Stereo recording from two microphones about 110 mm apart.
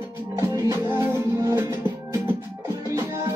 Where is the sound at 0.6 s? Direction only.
25° right (ahead or behind).